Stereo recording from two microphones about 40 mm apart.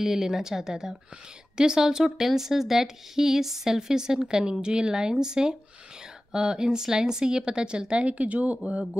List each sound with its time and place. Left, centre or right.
0.0 s speech: centre; by 8.5 s right